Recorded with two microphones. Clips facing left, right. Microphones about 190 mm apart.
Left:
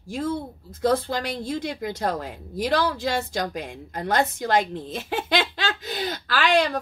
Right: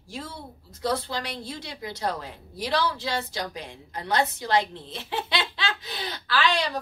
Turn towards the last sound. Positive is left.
turn(degrees=50)  # may be behind; listen again after turning